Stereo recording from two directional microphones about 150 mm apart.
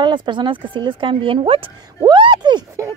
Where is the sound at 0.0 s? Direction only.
30° right (ahead or behind).